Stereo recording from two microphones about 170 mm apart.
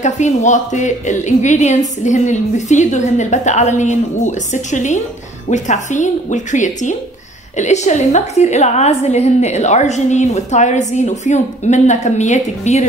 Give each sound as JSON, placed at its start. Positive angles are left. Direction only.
{"t": 0.0, "sound": "a woman's voice", "side_deg": 45}